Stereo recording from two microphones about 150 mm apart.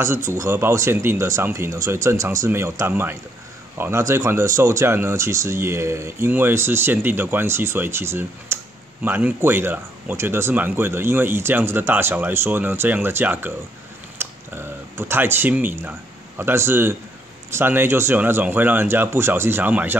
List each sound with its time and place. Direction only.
0.0 s speech: 20° right (ahead or behind)
14.1 s a sound: 15° right (ahead or behind)
16.3 s speech: 15° right (ahead or behind)